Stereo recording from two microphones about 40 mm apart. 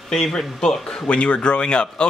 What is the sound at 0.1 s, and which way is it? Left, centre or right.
Speech, centre.